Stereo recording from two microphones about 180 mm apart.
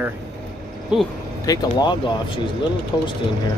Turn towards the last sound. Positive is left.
turn(degrees=20)  # may be behind; listen again after turning